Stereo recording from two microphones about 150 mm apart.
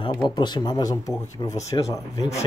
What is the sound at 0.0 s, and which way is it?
Speech, 30° left (ahead or behind).